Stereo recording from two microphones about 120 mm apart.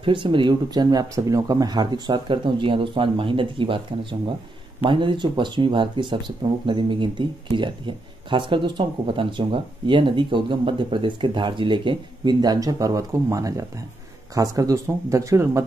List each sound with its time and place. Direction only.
0.0 s speech: 45° right (ahead or behind); by 15.6 s 25° right (ahead or behind)